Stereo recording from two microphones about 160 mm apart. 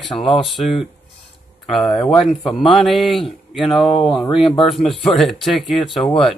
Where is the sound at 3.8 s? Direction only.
35° left (ahead or behind).